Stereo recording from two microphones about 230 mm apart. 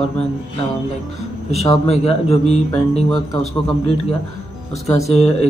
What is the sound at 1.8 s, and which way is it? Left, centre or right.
Speech, left.